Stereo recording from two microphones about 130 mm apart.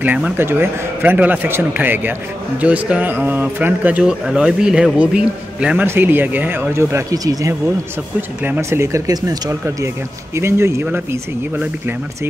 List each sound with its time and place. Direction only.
0.0 s speech: 10° right (ahead or behind)